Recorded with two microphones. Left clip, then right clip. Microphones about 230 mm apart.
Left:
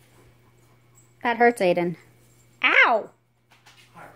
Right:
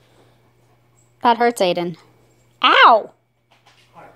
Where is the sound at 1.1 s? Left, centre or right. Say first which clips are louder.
Right 4 dB; right.